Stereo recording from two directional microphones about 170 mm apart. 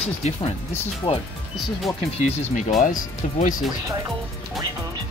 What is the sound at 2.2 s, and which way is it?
Speech, 40° left (ahead or behind).